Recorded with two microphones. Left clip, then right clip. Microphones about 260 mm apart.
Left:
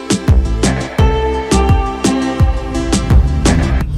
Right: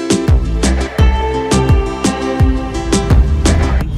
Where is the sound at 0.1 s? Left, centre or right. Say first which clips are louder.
Left 2 dB; centre.